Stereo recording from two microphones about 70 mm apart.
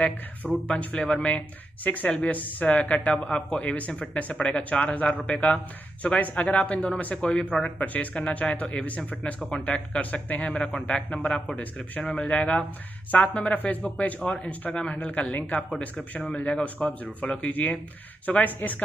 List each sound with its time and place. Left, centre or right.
0.7 s speech: centre